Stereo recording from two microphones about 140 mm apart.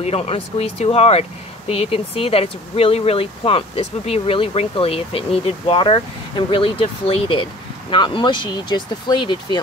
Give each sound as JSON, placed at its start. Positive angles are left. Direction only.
{"t": 0.0, "sound": "speech", "side_deg": 45}